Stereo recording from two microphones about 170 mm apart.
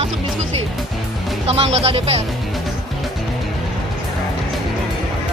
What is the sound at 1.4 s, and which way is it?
Speech, 35° right (ahead or behind).